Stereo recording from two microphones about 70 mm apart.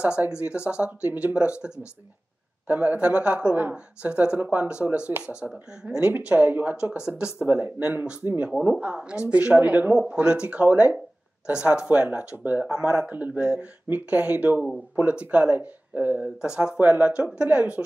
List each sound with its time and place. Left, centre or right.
0.3 s speech: centre
7.3 s speech: right
16.3 s speech: centre